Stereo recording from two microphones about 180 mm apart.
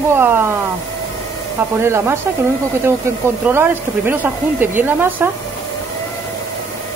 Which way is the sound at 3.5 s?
10° right (ahead or behind).